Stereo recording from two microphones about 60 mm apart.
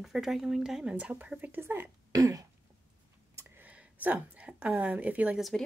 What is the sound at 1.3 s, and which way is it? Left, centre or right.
Speech, right.